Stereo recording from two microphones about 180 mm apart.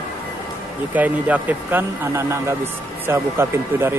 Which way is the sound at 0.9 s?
10° right (ahead or behind).